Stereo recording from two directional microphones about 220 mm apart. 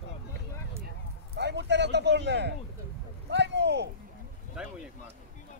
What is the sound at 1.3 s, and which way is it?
Speech, 50° right (ahead or behind).